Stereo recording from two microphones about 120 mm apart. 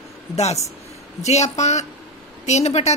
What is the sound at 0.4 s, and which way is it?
A woman's voice, 65° left (ahead or behind).